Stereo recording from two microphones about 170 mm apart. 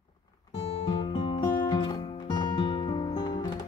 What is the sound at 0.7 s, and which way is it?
Music, 35° left (ahead or behind).